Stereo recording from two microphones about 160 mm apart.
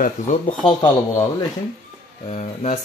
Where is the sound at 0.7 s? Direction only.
30° left (ahead or behind).